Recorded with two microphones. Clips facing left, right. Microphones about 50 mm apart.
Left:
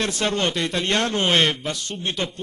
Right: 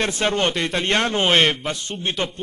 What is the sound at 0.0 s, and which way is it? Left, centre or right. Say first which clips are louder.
A man's voice: right 2 dB; right.